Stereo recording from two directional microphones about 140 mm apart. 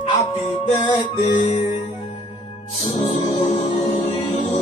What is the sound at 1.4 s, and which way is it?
Music, 65° left (ahead or behind).